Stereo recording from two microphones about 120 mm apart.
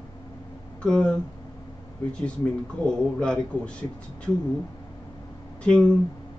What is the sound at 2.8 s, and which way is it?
Speech, 10° left (ahead or behind).